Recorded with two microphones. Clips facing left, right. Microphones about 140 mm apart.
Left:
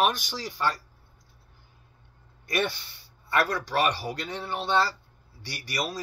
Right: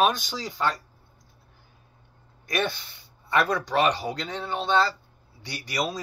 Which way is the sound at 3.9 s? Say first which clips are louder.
Right 3 dB; 20° right (ahead or behind).